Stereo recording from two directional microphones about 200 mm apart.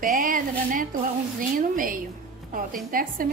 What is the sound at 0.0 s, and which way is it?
Speech, 45° right (ahead or behind).